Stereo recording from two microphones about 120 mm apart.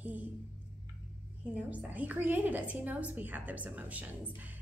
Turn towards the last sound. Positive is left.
turn(degrees=-15)  # may be behind; listen again after turning